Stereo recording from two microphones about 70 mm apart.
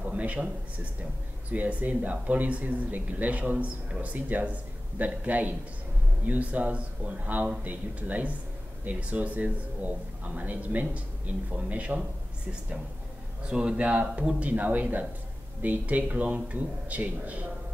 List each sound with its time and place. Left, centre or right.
0.0 s a sound: right
1.5 s speech: right
13.4 s speech: centre